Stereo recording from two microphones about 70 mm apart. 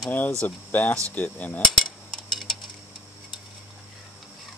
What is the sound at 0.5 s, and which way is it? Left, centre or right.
Speech, left.